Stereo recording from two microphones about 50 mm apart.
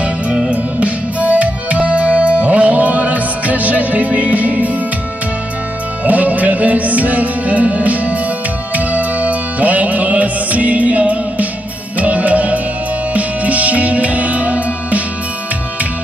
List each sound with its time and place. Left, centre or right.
0.0 s music: right
6.0 s music: right